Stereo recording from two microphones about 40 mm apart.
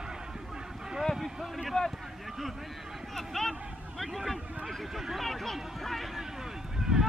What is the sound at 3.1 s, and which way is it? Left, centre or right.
Vehicle, centre.